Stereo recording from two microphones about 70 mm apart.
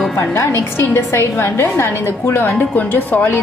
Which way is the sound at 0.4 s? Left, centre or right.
Left.